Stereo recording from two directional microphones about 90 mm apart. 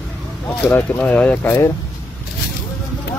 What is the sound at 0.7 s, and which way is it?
Speech, 15° left (ahead or behind).